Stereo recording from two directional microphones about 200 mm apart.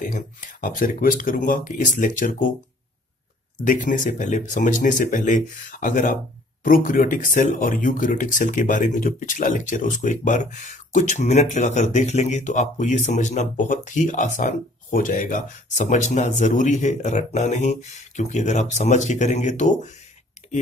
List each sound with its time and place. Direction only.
0.0 s speech: 45° left (ahead or behind)
3.6 s speech: 40° left (ahead or behind)